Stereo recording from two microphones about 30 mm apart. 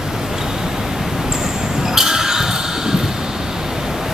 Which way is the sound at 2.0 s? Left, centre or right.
Centre.